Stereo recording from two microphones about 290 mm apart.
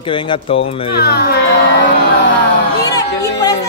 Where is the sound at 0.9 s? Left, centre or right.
Left.